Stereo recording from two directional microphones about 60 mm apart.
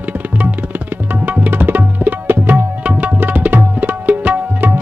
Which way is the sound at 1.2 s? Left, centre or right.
Right.